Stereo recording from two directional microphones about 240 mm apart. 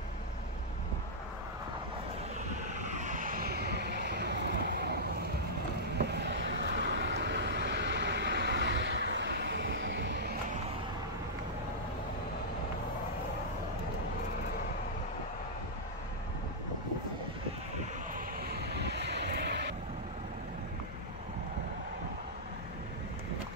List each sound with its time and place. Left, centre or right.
2.8 s vehicle: right
6.0 s vehicle: right
18.1 s vehicle: right